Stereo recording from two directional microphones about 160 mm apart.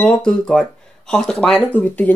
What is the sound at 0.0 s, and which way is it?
Speech, 5° left (ahead or behind).